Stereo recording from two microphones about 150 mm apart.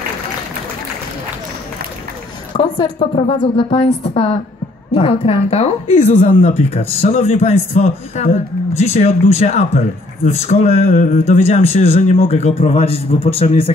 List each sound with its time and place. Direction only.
2.5 s a woman's voice: 35° left (ahead or behind)